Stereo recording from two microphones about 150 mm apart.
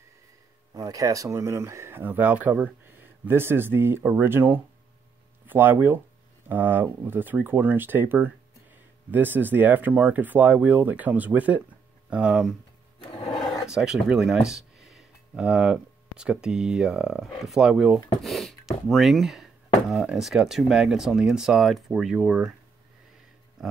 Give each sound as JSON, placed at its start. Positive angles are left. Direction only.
{"t": 0.7, "sound": "speech", "side_deg": -20}